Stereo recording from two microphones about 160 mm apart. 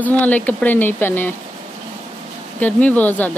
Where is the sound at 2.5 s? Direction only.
10° left (ahead or behind).